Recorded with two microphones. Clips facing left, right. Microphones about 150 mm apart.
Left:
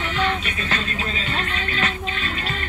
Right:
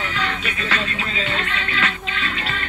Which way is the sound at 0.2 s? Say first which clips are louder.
Left 4 dB; 30° left (ahead or behind).